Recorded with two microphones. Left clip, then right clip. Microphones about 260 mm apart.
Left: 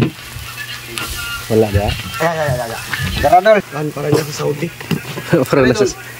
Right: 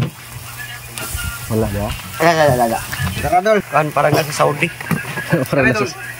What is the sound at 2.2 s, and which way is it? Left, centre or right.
Speech, right.